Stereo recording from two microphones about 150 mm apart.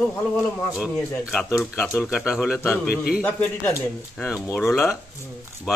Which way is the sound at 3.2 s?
10° left (ahead or behind).